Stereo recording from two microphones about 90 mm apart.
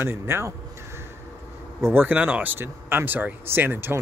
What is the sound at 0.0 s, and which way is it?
Speech, 30° right (ahead or behind).